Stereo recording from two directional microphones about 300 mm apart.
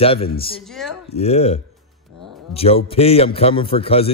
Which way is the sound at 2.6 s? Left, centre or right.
Centre.